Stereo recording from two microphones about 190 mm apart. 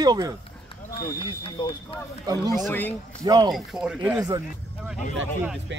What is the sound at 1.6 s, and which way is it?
Speech, 25° left (ahead or behind).